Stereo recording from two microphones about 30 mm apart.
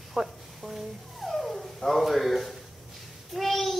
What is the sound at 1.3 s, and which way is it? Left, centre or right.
Dog, centre.